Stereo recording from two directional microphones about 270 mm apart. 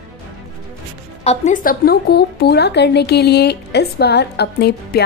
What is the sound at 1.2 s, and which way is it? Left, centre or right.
A woman's voice, left.